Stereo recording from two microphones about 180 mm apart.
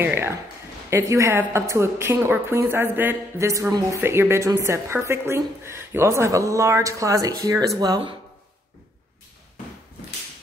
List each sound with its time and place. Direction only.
0.0 s a woman's voice: 10° right (ahead or behind)